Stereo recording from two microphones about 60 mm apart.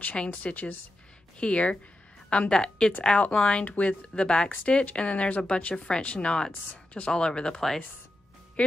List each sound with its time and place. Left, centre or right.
0.1 s speech: centre